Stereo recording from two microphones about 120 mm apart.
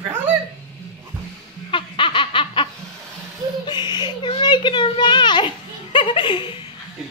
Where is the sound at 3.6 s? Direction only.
40° left (ahead or behind).